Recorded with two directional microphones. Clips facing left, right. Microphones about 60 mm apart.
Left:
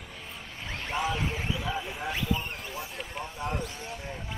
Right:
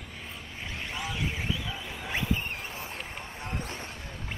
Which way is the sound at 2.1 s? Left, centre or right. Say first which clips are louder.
Right 1 dB; right.